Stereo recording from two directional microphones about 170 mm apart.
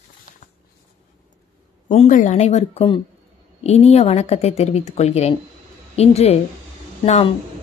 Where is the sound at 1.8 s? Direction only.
45° left (ahead or behind).